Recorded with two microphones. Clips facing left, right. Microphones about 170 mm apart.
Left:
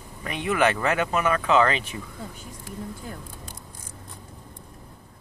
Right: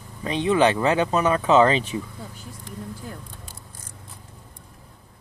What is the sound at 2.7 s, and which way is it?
Speech, 5° left (ahead or behind).